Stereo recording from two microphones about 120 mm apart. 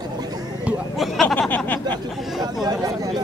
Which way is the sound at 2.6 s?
30° right (ahead or behind).